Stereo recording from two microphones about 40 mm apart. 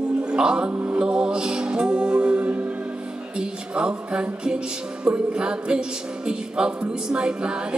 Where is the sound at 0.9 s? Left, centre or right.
Right.